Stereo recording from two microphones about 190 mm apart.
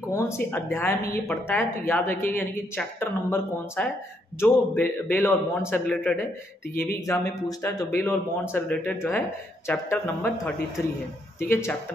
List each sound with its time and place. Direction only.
0.1 s a woman's voice: 15° left (ahead or behind)
6.7 s speech: 50° left (ahead or behind)
7.1 s a woman's voice: 15° left (ahead or behind)